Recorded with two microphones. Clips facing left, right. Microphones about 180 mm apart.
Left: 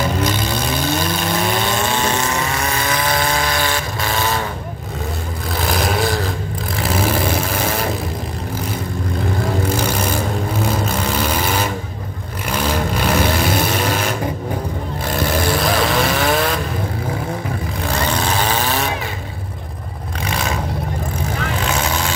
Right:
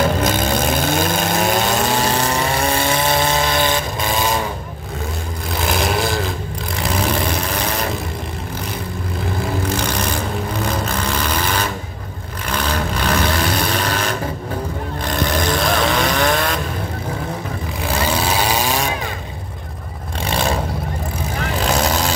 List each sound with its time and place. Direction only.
0.2 s vehicle: 50° right (ahead or behind); by 4.4 s 15° right (ahead or behind)
5.6 s vehicle: centre (ahead or behind)
9.7 s vehicle: 10° left (ahead or behind)
17.8 s a sound: 10° right (ahead or behind)
20.2 s vehicle: 30° right (ahead or behind)
21.6 s vehicle: 35° right (ahead or behind)